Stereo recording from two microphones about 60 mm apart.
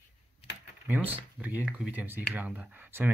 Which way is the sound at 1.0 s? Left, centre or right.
Right.